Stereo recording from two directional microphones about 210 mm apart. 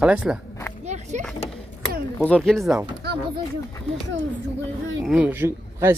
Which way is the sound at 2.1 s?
5° left (ahead or behind).